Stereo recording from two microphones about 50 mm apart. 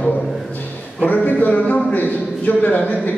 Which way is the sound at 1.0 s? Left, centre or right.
Left.